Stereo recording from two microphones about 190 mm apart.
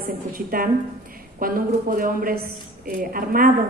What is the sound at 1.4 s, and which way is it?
A woman's voice, 50° right (ahead or behind).